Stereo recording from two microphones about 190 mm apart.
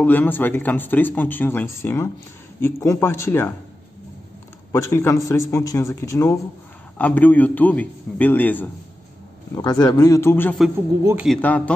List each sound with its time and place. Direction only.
0.0 s speech: 10° left (ahead or behind)
4.7 s speech: 15° left (ahead or behind)
9.6 s speech: 20° left (ahead or behind)